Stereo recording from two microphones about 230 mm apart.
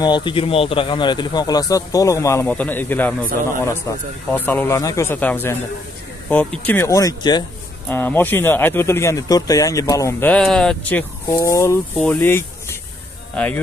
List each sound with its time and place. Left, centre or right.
0.0 s speech: centre
4.3 s speech: centre